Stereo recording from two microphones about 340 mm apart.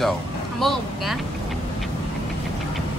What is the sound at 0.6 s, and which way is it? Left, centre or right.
Speech, centre.